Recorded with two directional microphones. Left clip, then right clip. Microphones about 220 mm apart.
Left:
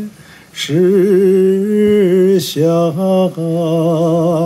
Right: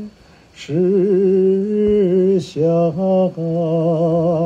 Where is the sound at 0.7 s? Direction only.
30° left (ahead or behind).